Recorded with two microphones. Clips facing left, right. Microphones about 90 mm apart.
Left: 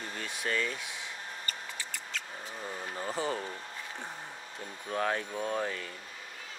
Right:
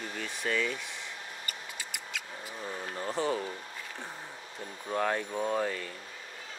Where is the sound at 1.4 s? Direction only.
15° right (ahead or behind).